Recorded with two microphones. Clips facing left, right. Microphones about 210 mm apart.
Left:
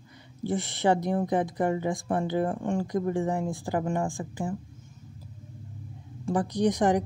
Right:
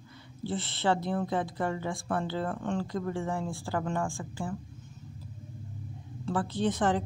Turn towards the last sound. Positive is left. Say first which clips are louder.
# left 4 dB
turn(degrees=15)  # may be behind; listen again after turning